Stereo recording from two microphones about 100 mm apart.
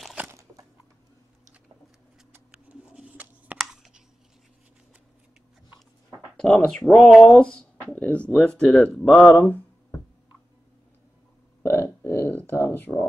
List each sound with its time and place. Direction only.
0.2 s biting: 15° right (ahead or behind)
2.5 s writing: 10° right (ahead or behind)
3.5 s computer keyboard: 5° right (ahead or behind)
6.0 s speech: 5° left (ahead or behind)
11.6 s a sound: 25° left (ahead or behind)